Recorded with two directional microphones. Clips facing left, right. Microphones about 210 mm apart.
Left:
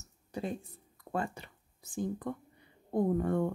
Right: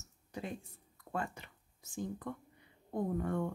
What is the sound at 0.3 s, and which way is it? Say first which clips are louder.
Speech: left 5 dB; 35° left (ahead or behind).